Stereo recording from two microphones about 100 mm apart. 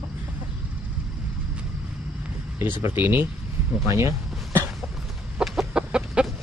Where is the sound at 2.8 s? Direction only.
20° right (ahead or behind).